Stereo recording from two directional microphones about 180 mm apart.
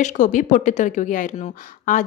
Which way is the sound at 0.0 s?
45° left (ahead or behind).